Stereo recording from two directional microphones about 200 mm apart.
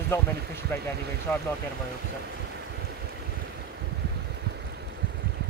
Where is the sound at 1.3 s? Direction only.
10° left (ahead or behind).